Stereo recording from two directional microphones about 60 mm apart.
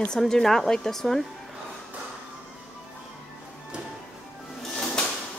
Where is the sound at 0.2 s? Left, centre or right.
Centre.